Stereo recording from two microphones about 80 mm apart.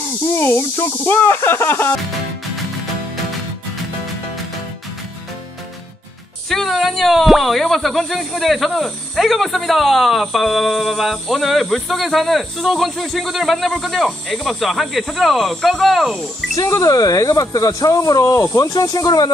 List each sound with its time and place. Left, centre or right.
0.4 s speech: left
6.5 s speech: centre
16.5 s speech: left
18.2 s speech: left